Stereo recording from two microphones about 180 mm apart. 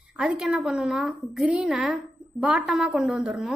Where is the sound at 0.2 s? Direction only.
5° right (ahead or behind).